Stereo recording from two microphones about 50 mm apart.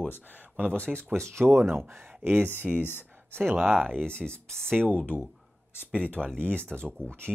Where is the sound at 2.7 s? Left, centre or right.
Left.